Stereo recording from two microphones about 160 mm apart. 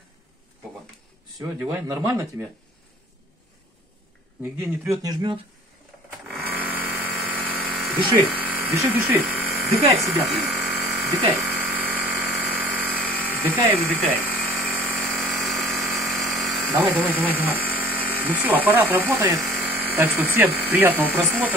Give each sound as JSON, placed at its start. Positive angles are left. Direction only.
{"t": 1.4, "sound": "speech", "side_deg": -10}
{"t": 4.4, "sound": "speech", "side_deg": -15}
{"t": 6.2, "sound": "electric toothbrush", "side_deg": -5}
{"t": 8.3, "sound": "electric shaver", "side_deg": -10}
{"t": 11.7, "sound": "a sound", "side_deg": -10}
{"t": 13.1, "sound": "speech", "side_deg": -10}
{"t": 14.6, "sound": "a sound", "side_deg": 0}
{"t": 15.8, "sound": "electric toothbrush", "side_deg": 0}
{"t": 17.4, "sound": "speech", "side_deg": -10}
{"t": 19.4, "sound": "electric shaver", "side_deg": 0}
{"t": 19.7, "sound": "speech", "side_deg": -10}